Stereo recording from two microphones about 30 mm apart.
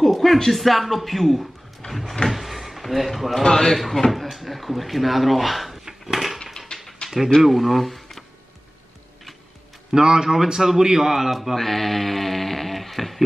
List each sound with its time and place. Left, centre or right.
0.0 s speech: centre
1.9 s a sound: centre
2.2 s speech: centre
3.4 s speech: centre
4.1 s speech: centre
6.1 s a sound: centre
6.7 s a sound: left
7.4 s speech: centre
9.9 s a man's voice: right; by 11.5 s centre
11.5 s speech: centre